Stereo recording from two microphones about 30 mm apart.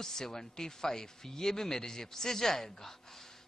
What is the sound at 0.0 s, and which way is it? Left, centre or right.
Speech, centre.